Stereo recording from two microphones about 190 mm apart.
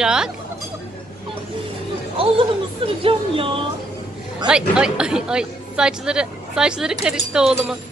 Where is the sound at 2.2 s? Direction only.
30° right (ahead or behind).